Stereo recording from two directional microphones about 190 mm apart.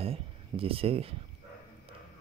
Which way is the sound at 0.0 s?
30° right (ahead or behind).